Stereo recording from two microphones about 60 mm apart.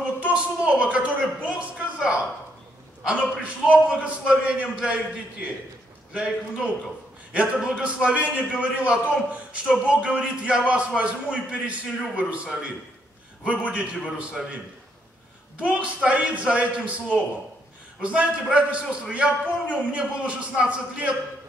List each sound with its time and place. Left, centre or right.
0.2 s a woman's voice: centre
3.3 s a man's voice: centre
13.5 s a man's voice: right
15.6 s a man's voice: centre